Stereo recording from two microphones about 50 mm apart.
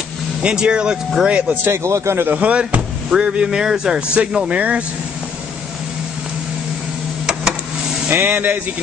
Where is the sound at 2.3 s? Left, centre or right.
Right.